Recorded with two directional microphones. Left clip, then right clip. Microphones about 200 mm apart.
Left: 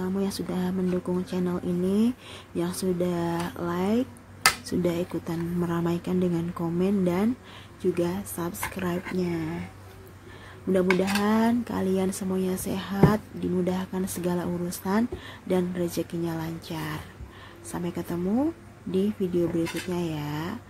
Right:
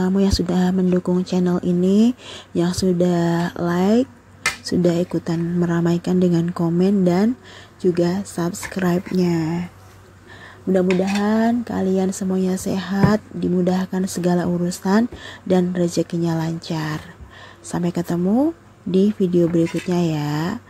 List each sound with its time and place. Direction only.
0.0 s speech: 30° right (ahead or behind)
10.7 s speech: 15° right (ahead or behind); by 20.5 s 30° right (ahead or behind)